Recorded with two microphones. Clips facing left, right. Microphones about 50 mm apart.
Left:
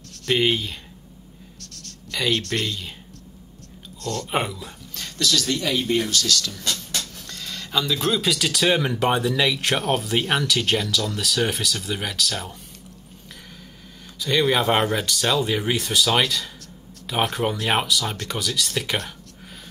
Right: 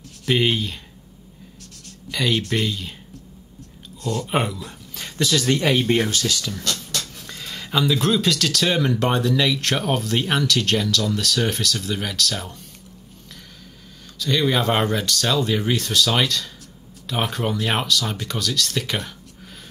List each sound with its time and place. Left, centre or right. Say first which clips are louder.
0.1 s speech: right 1 dB; centre
1.7 s a sound: right 4 dB; centre
2.1 s speech: right 2 dB; centre
4.0 s speech: right 3 dB; centre
4.3 s speech: right 1 dB; centre
4.9 s speech: right 2 dB; centre; by 6.1 s right
6.1 s speech: even; centre
14.1 s speech: even; centre